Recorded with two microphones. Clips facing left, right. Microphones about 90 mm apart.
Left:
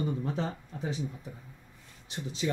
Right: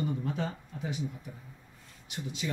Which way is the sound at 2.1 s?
35° left (ahead or behind).